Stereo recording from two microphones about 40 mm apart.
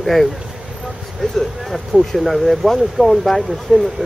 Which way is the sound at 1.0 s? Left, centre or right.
Centre.